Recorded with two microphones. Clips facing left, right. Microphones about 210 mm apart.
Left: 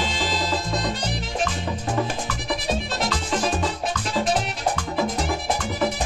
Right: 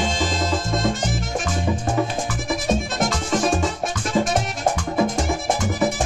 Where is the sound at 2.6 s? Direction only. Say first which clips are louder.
Right 5 dB; 45° right (ahead or behind).